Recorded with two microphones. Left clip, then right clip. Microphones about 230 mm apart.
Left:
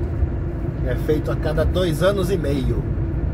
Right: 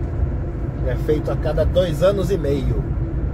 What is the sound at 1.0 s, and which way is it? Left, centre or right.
Speech, centre.